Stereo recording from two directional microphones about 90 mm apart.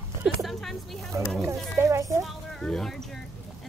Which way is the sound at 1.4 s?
30° right (ahead or behind).